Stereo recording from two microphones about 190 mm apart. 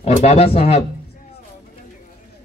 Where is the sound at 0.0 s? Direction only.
35° left (ahead or behind).